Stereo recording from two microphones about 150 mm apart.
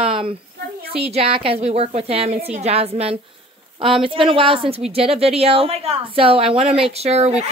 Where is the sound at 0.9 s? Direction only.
40° right (ahead or behind).